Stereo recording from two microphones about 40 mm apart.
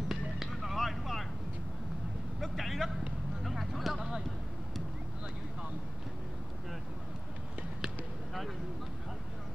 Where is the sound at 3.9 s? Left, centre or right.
Centre.